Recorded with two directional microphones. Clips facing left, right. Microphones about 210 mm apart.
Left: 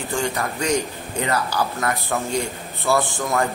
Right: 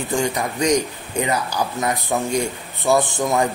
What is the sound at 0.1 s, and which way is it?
A man's voice, 15° right (ahead or behind).